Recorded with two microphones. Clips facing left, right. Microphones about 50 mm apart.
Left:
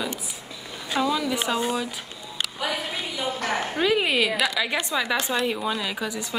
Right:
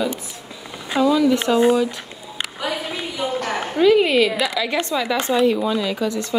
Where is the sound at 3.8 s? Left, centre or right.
Centre.